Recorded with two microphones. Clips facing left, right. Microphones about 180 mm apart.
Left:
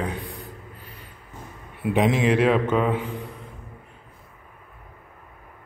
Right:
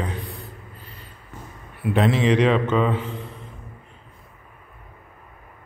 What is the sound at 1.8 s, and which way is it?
A man's voice, 15° left (ahead or behind).